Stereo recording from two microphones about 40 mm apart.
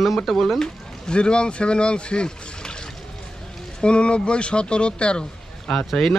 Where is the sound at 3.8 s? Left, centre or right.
Left.